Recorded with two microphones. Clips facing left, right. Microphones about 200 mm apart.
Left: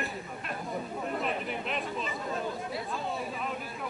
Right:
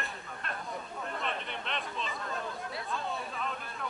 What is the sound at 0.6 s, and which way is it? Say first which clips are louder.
Chatter: left 5 dB; 25° left (ahead or behind).